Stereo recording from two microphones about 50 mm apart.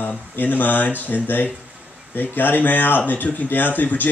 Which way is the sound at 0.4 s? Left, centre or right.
Left.